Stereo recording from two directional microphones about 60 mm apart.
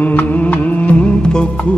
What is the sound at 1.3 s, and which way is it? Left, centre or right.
Music, centre.